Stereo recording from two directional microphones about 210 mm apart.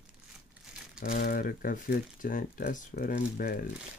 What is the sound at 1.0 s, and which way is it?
Speech, 40° left (ahead or behind).